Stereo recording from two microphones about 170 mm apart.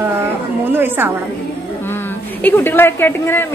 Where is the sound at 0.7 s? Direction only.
10° right (ahead or behind).